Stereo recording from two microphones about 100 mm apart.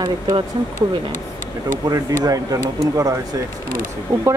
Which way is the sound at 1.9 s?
40° right (ahead or behind).